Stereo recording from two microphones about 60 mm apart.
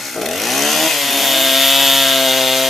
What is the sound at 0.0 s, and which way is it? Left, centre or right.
Chainsaw, centre.